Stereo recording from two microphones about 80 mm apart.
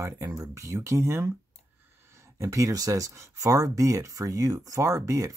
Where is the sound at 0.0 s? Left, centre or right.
Right.